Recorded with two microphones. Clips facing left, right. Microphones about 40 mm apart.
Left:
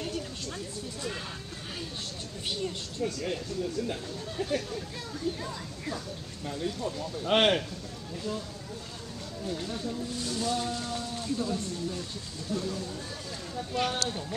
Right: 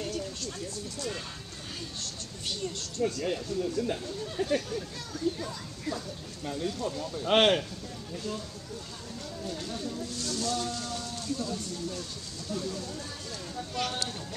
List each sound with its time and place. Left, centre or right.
0.0 s a sound: centre
3.0 s speech: centre
5.4 s speech: centre
9.5 s speech: centre